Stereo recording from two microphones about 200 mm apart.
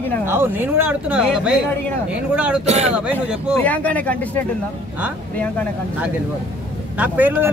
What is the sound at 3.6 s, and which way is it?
Speech, 5° left (ahead or behind).